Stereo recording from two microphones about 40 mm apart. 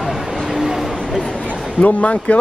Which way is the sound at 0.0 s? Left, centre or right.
Centre.